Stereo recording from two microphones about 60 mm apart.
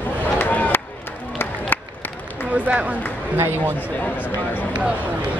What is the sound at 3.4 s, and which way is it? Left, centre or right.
Speech, right.